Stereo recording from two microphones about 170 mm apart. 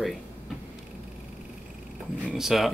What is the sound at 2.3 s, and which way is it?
Speech, centre (ahead or behind).